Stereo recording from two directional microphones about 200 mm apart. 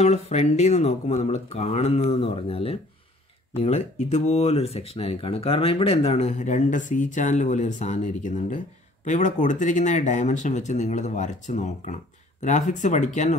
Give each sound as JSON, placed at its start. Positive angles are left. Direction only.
{"t": 0.0, "sound": "speech", "side_deg": 35}